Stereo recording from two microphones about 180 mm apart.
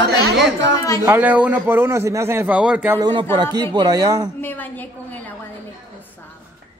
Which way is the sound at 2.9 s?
25° right (ahead or behind).